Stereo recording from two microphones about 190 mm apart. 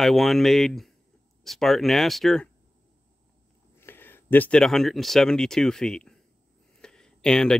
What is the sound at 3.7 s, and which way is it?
Speech, 10° left (ahead or behind).